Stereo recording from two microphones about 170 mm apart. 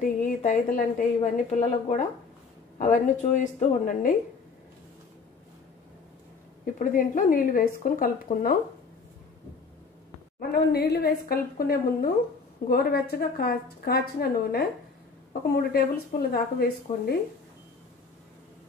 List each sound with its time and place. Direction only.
0.0 s a woman's voice: 50° left (ahead or behind)
6.6 s a woman's voice: 50° left (ahead or behind)
10.4 s a woman's voice: 65° left (ahead or behind)